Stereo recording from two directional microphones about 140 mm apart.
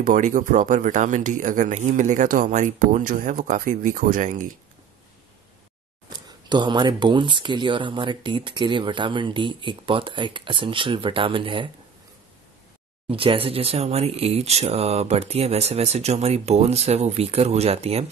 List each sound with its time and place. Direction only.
0.0 s speech: 65° right (ahead or behind)
6.0 s speech: 30° right (ahead or behind)
13.1 s speech: 40° right (ahead or behind)